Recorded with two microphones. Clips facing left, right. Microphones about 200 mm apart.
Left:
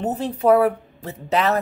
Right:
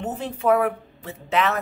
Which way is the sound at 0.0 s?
35° left (ahead or behind).